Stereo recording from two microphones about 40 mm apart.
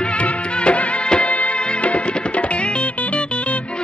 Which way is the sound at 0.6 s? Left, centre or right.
Left.